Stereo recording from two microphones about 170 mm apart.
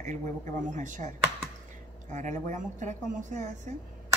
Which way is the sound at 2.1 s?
45° right (ahead or behind).